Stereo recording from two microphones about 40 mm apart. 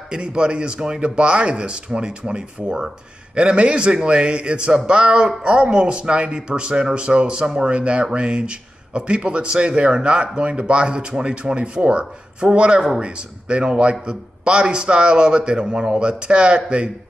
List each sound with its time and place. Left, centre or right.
0.1 s speech: right